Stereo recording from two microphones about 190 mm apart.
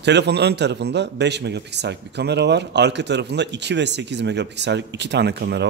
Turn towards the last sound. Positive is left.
turn(degrees=-60)  # may be behind; listen again after turning